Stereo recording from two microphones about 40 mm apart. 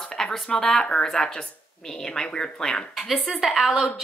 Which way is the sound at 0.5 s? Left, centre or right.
Centre.